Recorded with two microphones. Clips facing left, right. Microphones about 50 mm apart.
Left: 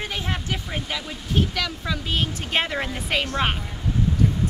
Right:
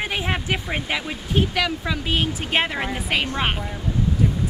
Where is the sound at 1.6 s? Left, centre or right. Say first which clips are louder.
Right 4 dB; centre.